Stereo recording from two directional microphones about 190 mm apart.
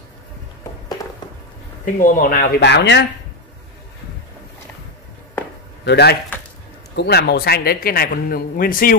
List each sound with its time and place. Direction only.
2.0 s speech: 45° left (ahead or behind); by 3.1 s 65° left (ahead or behind)
5.9 s speech: 60° left (ahead or behind)